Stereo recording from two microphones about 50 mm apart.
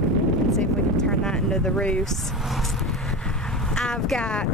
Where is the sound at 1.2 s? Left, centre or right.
Centre.